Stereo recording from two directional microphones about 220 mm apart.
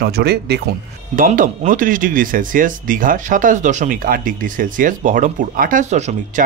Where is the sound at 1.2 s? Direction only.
35° right (ahead or behind).